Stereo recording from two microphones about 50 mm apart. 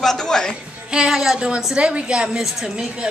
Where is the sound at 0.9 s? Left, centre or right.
Centre.